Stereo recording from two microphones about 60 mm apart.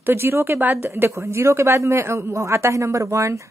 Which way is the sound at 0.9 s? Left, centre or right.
Right.